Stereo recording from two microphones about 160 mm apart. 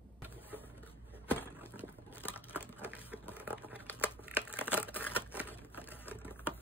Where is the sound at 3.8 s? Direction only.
10° left (ahead or behind).